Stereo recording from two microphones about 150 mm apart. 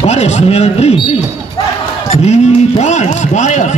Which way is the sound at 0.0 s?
45° left (ahead or behind).